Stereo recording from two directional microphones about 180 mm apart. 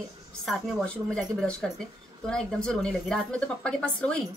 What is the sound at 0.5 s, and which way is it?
Speech, 5° left (ahead or behind).